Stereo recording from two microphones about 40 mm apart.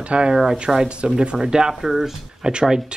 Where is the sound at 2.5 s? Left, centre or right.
Right.